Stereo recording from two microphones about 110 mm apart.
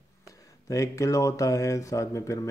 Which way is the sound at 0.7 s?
30° left (ahead or behind).